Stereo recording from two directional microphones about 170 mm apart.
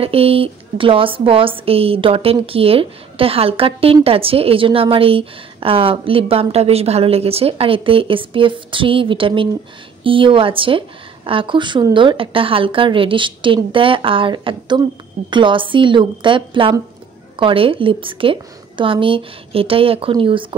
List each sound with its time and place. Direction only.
0.0 s a woman's voice: 35° right (ahead or behind)